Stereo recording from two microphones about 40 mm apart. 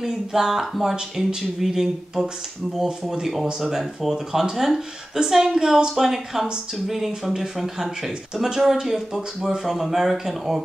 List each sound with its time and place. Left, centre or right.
0.0 s speech: centre
3.4 s speech: centre